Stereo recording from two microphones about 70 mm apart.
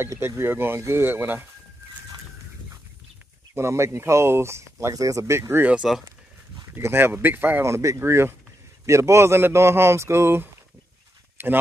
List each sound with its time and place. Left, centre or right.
0.0 s speech: right
3.5 s speech: right
5.6 s speech: centre
6.7 s speech: right
7.6 s speech: right